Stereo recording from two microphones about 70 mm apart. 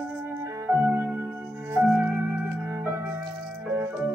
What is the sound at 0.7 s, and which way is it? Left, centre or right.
Music, right.